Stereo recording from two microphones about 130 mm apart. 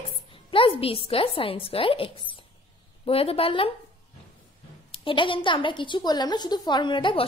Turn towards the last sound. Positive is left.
turn(degrees=40)  # may be behind; listen again after turning